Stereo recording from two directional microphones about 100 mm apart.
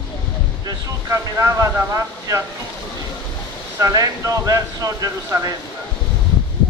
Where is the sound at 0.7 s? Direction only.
35° right (ahead or behind).